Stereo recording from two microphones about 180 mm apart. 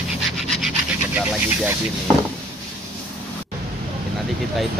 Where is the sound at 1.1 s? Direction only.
5° right (ahead or behind).